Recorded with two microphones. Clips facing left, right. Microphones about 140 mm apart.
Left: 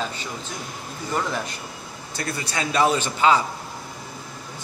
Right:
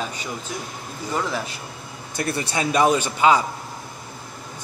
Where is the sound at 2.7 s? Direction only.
15° right (ahead or behind).